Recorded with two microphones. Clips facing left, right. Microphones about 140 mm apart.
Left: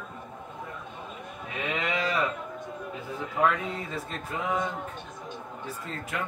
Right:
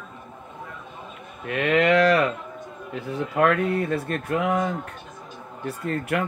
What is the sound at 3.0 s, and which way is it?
Speech, 75° right (ahead or behind).